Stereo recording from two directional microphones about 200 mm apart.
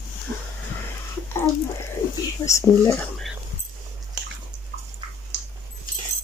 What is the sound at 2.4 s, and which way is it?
Speech, 15° left (ahead or behind).